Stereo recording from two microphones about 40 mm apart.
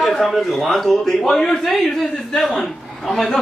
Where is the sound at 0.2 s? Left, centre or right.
Centre.